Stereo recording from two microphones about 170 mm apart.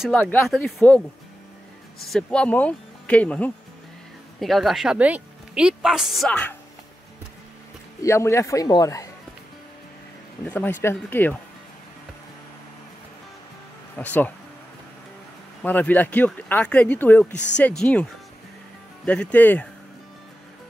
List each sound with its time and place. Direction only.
0.1 s speech: 10° left (ahead or behind)
2.0 s a woman's voice: 5° left (ahead or behind)
8.0 s speech: 15° left (ahead or behind)
10.4 s speech: 10° left (ahead or behind)
13.9 s speech: 10° left (ahead or behind)
15.6 s speech: 10° left (ahead or behind)
19.0 s speech: 10° left (ahead or behind)